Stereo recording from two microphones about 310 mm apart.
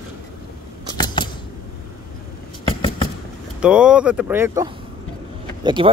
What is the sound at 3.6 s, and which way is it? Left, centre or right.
Speech, centre.